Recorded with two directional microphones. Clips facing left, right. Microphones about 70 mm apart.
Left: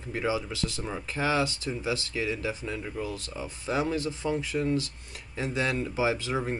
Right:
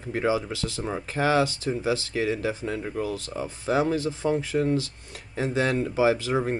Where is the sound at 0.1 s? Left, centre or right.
Right.